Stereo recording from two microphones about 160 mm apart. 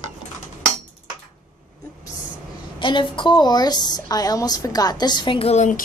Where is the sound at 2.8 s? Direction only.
30° left (ahead or behind).